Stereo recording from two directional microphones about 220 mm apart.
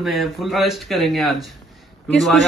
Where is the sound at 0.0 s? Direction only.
Centre (ahead or behind).